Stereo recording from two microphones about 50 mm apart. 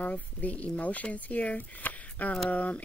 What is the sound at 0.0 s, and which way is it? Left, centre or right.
Speech, left.